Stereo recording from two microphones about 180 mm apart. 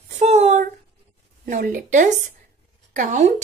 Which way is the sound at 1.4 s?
50° right (ahead or behind).